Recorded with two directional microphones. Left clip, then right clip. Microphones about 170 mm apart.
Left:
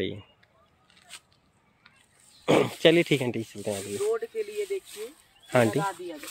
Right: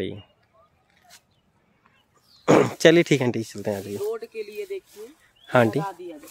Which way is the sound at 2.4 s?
40° right (ahead or behind).